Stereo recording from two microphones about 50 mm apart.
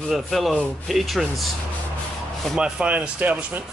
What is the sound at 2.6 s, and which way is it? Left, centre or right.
Speech, right.